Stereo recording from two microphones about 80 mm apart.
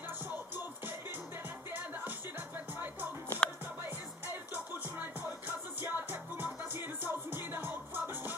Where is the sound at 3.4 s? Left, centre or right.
Centre.